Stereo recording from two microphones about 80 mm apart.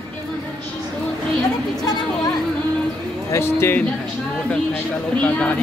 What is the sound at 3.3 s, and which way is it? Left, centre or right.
Speech, left.